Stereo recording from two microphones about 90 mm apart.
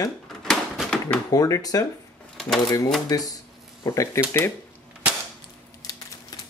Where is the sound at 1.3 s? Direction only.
40° left (ahead or behind).